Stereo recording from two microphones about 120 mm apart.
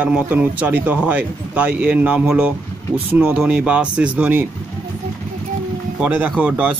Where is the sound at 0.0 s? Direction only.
15° right (ahead or behind).